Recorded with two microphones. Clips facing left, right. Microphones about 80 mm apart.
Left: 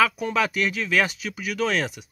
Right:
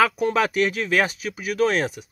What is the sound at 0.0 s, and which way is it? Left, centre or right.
Speech, right.